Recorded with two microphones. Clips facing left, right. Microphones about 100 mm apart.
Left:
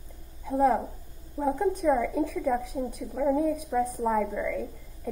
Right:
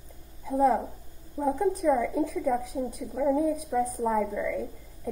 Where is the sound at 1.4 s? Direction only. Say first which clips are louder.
Even; 50° left (ahead or behind).